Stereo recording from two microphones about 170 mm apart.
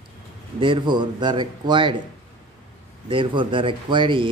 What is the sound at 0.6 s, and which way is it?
A man's voice, 25° right (ahead or behind).